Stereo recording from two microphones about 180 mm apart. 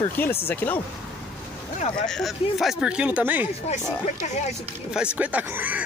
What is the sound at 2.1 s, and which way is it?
Speech, centre (ahead or behind).